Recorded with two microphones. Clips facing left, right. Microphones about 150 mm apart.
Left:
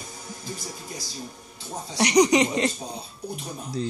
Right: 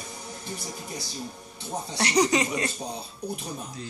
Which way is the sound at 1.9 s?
15° left (ahead or behind).